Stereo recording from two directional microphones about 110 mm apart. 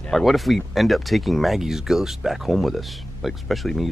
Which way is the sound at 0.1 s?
Centre (ahead or behind).